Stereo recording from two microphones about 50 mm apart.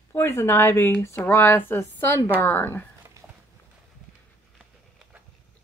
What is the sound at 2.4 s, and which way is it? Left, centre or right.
Speech, left.